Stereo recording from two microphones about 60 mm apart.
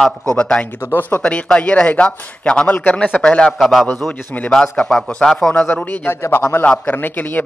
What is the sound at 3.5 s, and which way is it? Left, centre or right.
Speech, centre.